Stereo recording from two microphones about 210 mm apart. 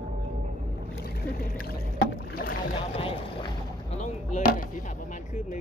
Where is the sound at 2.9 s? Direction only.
25° left (ahead or behind).